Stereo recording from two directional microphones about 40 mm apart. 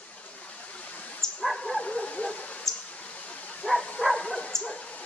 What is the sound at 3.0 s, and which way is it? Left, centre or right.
Waterfall, left.